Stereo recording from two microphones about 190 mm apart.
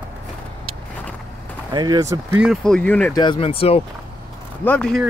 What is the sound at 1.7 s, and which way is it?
Speech, 20° right (ahead or behind).